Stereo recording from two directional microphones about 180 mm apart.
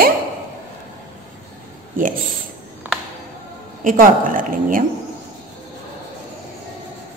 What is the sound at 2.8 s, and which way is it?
Music, 10° right (ahead or behind).